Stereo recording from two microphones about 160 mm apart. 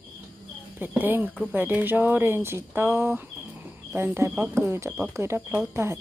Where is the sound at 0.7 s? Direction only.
10° right (ahead or behind).